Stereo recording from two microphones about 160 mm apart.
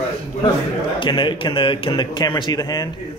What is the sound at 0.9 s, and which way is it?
A man's voice, 30° left (ahead or behind).